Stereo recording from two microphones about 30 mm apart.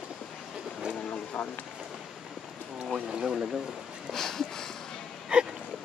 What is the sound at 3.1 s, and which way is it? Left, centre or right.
Speech, right.